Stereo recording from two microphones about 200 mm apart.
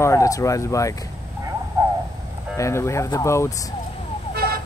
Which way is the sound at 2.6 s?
15° left (ahead or behind).